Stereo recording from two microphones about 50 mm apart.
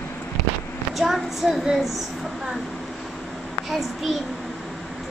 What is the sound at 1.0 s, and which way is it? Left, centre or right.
Speech, centre.